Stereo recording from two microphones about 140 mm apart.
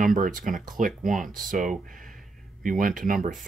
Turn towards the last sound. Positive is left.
turn(degrees=-75)  # may be behind; listen again after turning